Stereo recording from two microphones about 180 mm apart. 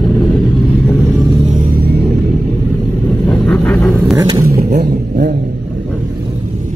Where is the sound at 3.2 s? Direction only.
10° left (ahead or behind).